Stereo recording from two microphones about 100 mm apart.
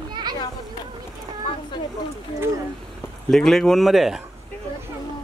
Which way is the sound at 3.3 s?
5° left (ahead or behind).